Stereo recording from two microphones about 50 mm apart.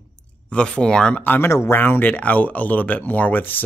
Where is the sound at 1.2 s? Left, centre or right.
Left.